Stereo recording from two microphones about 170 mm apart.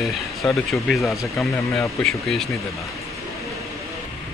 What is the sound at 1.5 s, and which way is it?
Speech, 15° left (ahead or behind).